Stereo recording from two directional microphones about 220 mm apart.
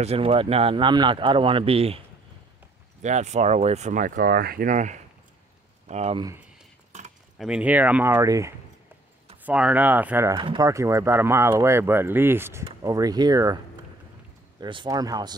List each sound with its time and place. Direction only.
0.0 s speech: 25° right (ahead or behind)
7.3 s speech: 5° right (ahead or behind)
10.3 s speech: 20° right (ahead or behind)
14.6 s speech: 20° right (ahead or behind)